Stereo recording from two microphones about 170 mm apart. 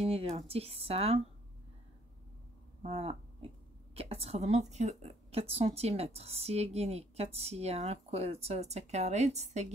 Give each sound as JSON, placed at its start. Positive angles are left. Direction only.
{"t": 0.0, "sound": "a woman's voice", "side_deg": -35}
{"t": 2.8, "sound": "a woman's voice", "side_deg": -35}